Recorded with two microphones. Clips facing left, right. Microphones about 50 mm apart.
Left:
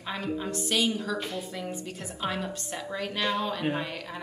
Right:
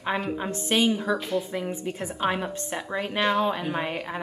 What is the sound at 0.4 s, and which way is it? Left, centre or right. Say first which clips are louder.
Speech: right 2 dB; right.